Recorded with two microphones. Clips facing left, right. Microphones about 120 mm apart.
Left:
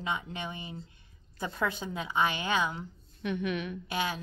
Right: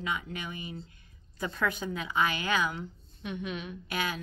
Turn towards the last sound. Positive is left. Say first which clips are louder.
# left 1 dB
turn(degrees=25)  # may be behind; listen again after turning